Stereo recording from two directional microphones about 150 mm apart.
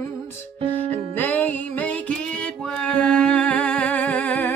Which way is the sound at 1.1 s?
10° left (ahead or behind).